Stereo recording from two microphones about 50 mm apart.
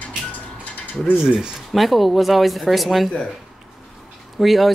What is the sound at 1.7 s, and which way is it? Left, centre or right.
Speech, centre.